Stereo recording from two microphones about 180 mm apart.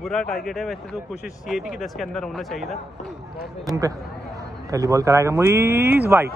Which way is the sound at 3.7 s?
20° right (ahead or behind).